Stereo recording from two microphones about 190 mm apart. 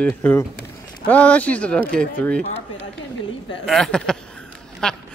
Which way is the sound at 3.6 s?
Centre (ahead or behind).